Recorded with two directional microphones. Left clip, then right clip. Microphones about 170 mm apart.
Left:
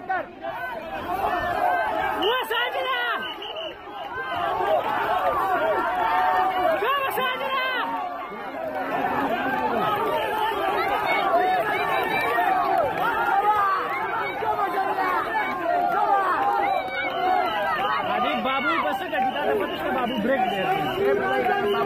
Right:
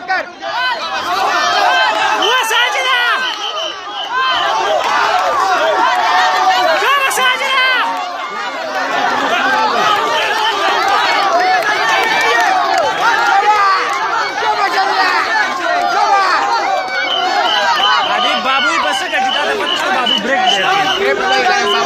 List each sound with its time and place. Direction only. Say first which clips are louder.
11.3 s run: right 9 dB; 55° right (ahead or behind)
16.1 s chatter: right 9 dB; 50° right (ahead or behind)